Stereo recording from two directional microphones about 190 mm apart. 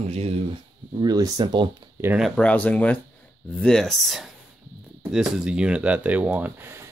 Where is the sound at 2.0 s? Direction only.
5° right (ahead or behind).